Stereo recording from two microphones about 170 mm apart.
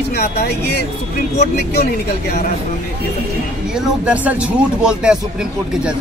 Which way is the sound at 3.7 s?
5° right (ahead or behind).